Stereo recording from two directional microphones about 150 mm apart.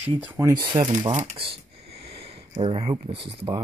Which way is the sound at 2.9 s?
25° right (ahead or behind).